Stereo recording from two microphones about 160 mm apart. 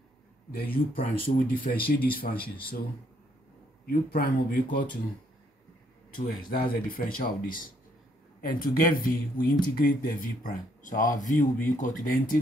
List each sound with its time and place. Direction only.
0.5 s speech: 65° left (ahead or behind)
2.4 s speech: 30° left (ahead or behind)
3.8 s speech: 65° left (ahead or behind)
6.2 s speech: 60° left (ahead or behind)